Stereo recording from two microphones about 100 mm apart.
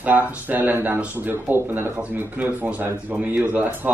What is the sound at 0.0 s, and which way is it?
A woman's voice, 15° right (ahead or behind).